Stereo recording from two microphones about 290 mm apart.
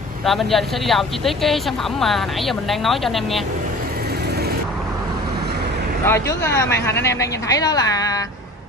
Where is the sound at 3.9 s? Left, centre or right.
Right.